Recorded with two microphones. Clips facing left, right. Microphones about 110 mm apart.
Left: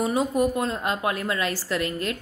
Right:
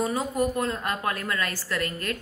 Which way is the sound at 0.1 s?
20° left (ahead or behind).